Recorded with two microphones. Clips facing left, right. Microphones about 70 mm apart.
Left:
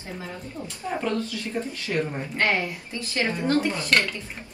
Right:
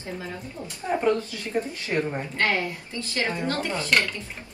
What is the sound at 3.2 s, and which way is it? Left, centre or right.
Speech, right.